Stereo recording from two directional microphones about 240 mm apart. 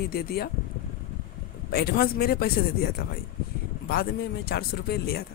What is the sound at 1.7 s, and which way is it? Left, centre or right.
Speech, left.